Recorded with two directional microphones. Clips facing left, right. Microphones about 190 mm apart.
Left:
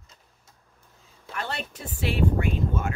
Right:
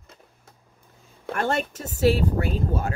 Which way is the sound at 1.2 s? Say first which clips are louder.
Right 9 dB; 50° right (ahead or behind).